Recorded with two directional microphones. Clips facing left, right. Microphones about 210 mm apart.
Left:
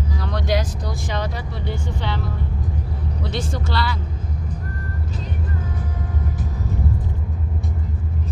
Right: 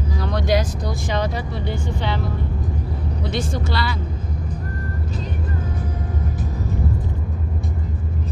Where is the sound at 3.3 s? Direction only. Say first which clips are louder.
Right 2 dB; 15° right (ahead or behind).